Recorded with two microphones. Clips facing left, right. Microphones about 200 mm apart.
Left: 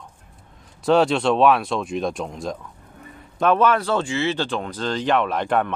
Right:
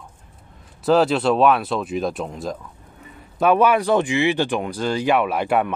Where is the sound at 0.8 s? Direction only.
Centre (ahead or behind).